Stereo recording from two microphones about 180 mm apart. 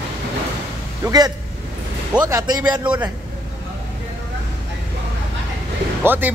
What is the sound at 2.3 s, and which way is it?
Speech, 20° right (ahead or behind).